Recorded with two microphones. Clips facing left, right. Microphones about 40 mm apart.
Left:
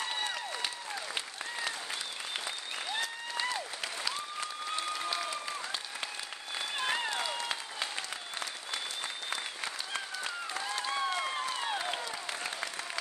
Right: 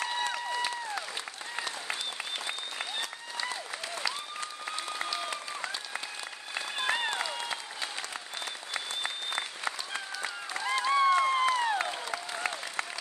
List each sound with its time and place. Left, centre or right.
6.8 s applause: right
9.0 s applause: right
10.7 s applause: right